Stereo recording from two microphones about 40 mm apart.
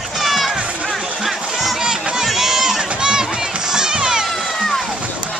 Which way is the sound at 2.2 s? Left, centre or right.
Centre.